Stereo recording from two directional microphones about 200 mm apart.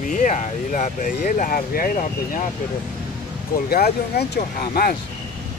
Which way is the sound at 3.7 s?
50° left (ahead or behind).